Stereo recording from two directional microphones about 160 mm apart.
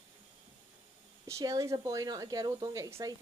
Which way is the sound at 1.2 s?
20° right (ahead or behind).